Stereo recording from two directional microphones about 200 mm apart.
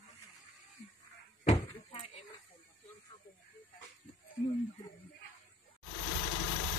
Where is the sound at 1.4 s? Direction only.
30° left (ahead or behind).